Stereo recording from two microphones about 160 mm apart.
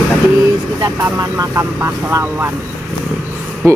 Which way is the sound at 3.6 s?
15° right (ahead or behind).